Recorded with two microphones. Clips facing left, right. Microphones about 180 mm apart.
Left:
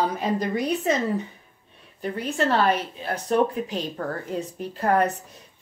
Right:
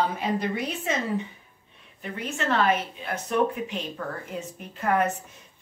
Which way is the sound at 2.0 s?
35° left (ahead or behind).